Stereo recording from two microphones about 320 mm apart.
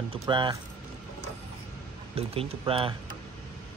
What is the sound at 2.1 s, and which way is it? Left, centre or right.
Speech, centre.